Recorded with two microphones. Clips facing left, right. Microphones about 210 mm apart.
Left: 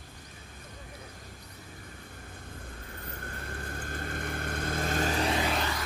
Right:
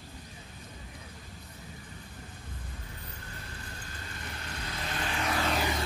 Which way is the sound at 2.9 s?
55° left (ahead or behind).